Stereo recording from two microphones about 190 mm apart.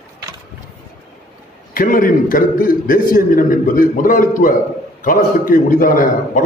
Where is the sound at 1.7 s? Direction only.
50° left (ahead or behind).